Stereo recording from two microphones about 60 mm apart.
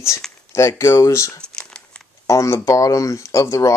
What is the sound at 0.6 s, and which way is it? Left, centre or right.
Speech, left.